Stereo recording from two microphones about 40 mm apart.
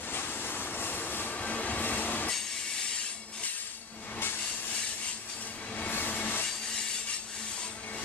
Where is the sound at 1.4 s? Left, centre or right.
Left.